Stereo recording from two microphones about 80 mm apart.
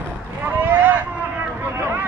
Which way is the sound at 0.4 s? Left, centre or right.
Right.